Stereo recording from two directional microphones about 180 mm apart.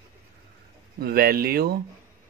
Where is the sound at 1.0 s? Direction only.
55° right (ahead or behind).